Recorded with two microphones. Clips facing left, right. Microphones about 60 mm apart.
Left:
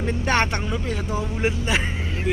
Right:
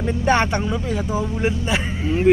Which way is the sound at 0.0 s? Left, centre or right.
Centre.